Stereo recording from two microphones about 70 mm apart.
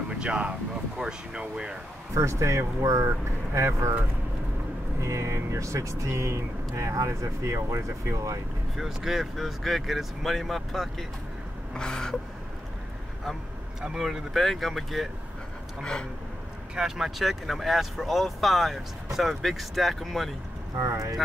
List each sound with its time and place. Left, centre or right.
0.1 s speech: centre
2.1 s speech: right
5.0 s speech: right
8.7 s speech: centre
11.7 s gasp: centre
13.7 s speech: centre
15.8 s gasp: centre
16.7 s speech: centre
20.7 s speech: right